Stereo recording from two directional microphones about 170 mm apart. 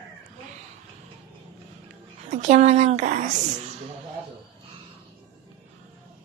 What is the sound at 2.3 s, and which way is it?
A woman's voice, 45° right (ahead or behind).